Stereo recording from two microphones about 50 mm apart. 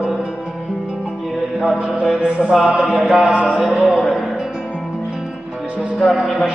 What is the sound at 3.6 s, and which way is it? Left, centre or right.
Music, centre.